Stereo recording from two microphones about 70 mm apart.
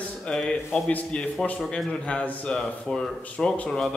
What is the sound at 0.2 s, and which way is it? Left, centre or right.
A man's voice, centre.